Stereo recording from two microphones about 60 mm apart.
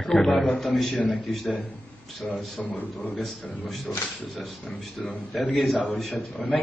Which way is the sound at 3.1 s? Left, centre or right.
Centre.